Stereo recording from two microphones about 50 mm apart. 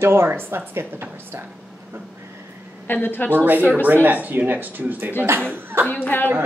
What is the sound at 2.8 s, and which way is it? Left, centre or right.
Speech, left.